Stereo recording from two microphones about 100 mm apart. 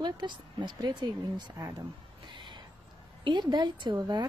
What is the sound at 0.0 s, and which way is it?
Speech, 50° right (ahead or behind).